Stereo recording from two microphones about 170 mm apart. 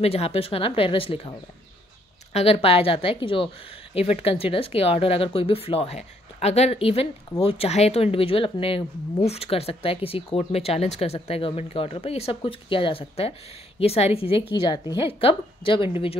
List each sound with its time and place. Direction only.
0.0 s speech: 35° left (ahead or behind)
2.3 s a woman's voice: 35° left (ahead or behind)